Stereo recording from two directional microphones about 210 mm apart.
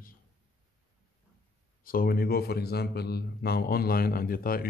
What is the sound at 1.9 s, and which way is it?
Speech, 45° left (ahead or behind).